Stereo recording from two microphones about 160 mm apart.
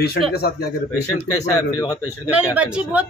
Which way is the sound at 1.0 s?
20° left (ahead or behind).